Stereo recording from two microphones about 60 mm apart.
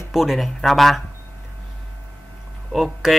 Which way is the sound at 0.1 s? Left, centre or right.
Centre.